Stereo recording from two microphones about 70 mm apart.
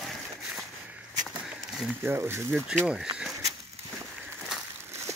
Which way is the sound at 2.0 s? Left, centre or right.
Right.